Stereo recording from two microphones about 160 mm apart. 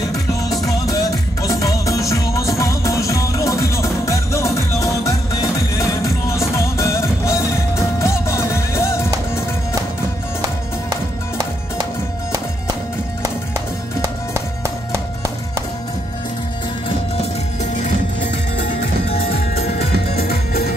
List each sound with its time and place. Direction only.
0.1 s music: 20° left (ahead or behind)
10.9 s music: 25° right (ahead or behind)
14.0 s music: 15° right (ahead or behind)
19.6 s music: 40° left (ahead or behind)